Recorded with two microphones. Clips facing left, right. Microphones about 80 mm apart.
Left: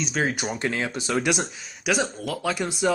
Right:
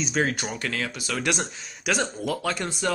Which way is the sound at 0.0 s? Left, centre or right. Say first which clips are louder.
Even; centre.